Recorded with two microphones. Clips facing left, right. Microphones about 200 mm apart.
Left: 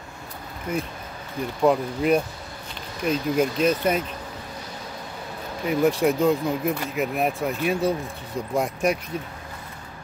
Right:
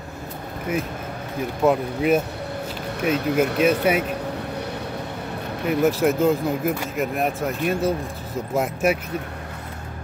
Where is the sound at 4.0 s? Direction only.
65° right (ahead or behind).